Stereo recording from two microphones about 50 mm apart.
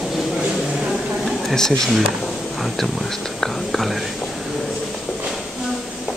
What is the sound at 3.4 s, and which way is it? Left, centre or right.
Whispering, centre.